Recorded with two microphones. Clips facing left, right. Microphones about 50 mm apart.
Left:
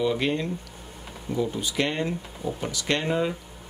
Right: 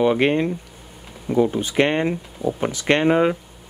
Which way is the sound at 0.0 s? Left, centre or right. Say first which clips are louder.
Right 7 dB; right.